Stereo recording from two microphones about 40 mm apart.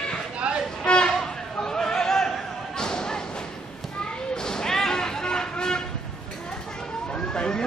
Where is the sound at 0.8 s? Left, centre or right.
Centre.